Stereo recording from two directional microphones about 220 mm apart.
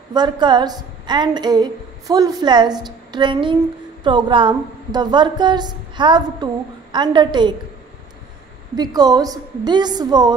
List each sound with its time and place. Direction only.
0.1 s a woman's voice: 20° right (ahead or behind)
8.7 s a woman's voice: 15° right (ahead or behind)